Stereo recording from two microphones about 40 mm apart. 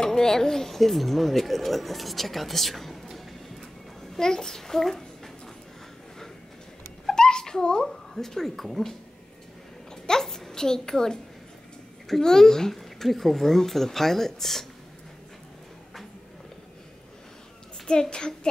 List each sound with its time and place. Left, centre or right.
0.0 s speech: centre
4.2 s a child's voice: centre
7.1 s a sound: centre
7.9 s speech: centre
10.0 s a sound: centre
12.1 s speech: centre
18.1 s a child's voice: centre